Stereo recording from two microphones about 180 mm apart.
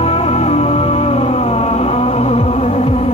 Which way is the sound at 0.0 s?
35° left (ahead or behind).